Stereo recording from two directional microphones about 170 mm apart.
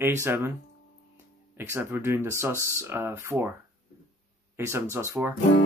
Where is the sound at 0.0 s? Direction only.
15° right (ahead or behind).